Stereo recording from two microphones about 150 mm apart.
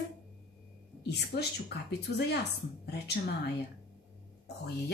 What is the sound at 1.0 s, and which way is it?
Speech, 90° left.